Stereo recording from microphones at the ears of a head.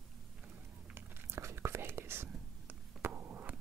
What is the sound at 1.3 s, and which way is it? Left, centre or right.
Whispering, right.